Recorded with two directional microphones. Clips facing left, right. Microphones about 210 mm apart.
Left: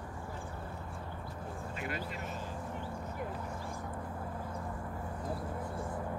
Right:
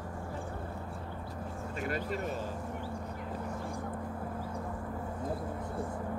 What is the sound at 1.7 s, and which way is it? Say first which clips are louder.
Speech: right 7 dB; 45° right (ahead or behind).